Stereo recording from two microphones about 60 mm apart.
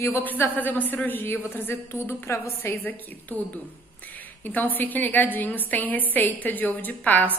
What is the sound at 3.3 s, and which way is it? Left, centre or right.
A woman's voice, left.